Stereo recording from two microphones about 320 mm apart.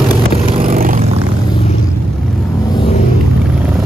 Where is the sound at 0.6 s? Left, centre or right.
Right.